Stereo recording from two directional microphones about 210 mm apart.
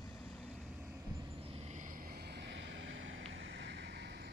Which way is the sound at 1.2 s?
30° right (ahead or behind).